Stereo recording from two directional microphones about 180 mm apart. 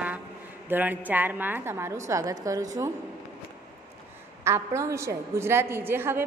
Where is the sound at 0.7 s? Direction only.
10° right (ahead or behind).